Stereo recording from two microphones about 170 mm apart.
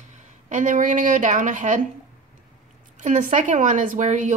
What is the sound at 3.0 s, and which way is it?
A woman's voice, 45° right (ahead or behind).